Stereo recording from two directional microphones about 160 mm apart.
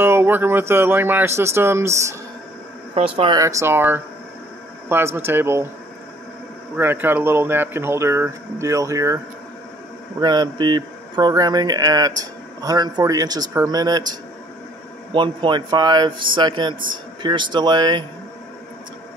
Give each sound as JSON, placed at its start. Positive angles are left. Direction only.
{"t": 0.0, "sound": "speech", "side_deg": -15}
{"t": 2.9, "sound": "speech", "side_deg": -40}
{"t": 3.3, "sound": "speech", "side_deg": -20}
{"t": 6.8, "sound": "speech", "side_deg": -15}
{"t": 10.2, "sound": "speech", "side_deg": -25}
{"t": 15.1, "sound": "speech", "side_deg": -30}